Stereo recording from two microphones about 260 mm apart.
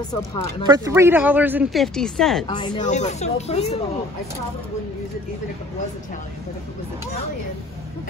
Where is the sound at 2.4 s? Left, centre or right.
Centre.